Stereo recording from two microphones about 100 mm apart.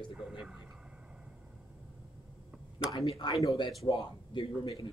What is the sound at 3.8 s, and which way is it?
Speech, 50° left (ahead or behind).